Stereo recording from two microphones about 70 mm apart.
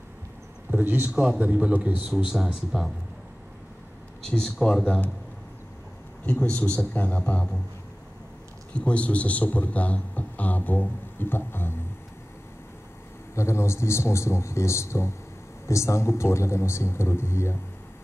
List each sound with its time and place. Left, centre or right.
0.7 s a man's voice: right
2.3 s speech: centre
4.3 s speech: centre
6.2 s a man's voice: centre
8.7 s a man's voice: centre; by 11.8 s left
13.3 s a man's voice: left